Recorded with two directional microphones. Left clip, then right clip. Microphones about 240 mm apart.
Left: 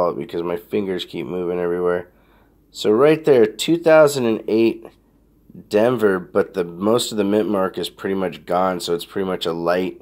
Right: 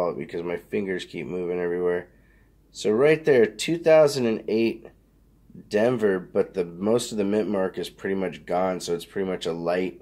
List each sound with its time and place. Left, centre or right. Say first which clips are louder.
0.0 s speech: left 6 dB; left